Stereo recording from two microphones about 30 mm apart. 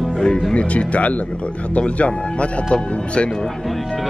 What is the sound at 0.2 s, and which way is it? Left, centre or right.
Speech, left.